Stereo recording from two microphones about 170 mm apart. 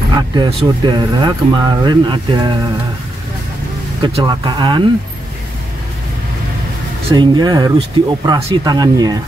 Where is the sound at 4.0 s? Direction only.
25° right (ahead or behind).